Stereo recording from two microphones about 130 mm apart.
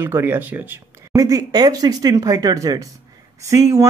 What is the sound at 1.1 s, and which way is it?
Speech, 30° right (ahead or behind).